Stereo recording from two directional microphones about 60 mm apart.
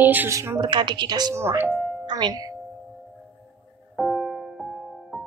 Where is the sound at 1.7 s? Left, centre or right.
Centre.